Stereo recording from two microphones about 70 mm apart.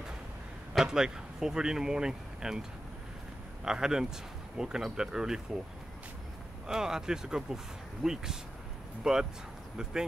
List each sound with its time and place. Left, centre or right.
0.7 s speech: centre
3.6 s speech: centre
6.7 s speech: centre